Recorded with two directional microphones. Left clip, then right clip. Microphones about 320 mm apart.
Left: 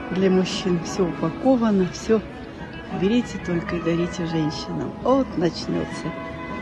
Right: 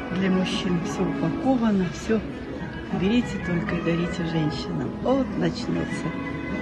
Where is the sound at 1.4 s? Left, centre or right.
Centre.